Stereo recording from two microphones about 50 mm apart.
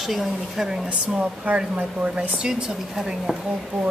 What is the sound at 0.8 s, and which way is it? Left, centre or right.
A woman's voice, right.